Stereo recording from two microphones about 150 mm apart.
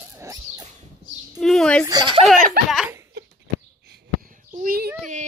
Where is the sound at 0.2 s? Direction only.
20° right (ahead or behind).